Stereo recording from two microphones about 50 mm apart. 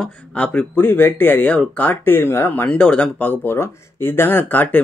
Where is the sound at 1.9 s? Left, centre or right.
Left.